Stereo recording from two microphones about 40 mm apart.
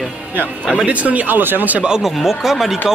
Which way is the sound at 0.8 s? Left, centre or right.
Right.